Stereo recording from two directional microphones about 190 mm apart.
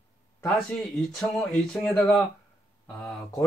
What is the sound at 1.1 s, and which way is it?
Speech, centre (ahead or behind).